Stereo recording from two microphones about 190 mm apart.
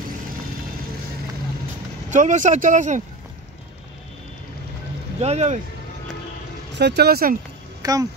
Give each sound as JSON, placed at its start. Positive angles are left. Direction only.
{"t": 2.0, "sound": "speech", "side_deg": -40}
{"t": 5.2, "sound": "speech", "side_deg": -35}
{"t": 6.8, "sound": "speech", "side_deg": -60}
{"t": 7.8, "sound": "speech", "side_deg": -20}